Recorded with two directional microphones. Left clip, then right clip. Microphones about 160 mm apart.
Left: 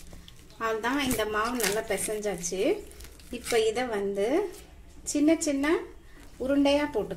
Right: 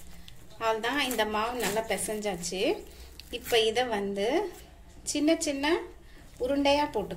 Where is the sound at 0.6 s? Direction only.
25° left (ahead or behind).